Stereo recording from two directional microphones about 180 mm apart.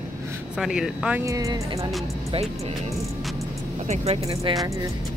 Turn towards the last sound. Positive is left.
turn(degrees=-35)  # may be behind; listen again after turning